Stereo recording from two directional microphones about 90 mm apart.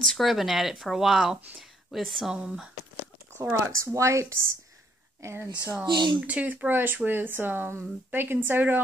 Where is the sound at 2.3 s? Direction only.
10° right (ahead or behind).